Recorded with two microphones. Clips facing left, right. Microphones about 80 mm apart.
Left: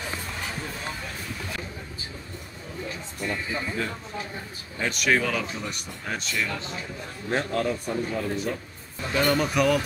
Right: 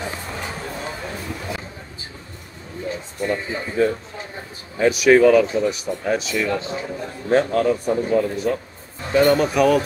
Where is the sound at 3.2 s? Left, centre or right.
Right.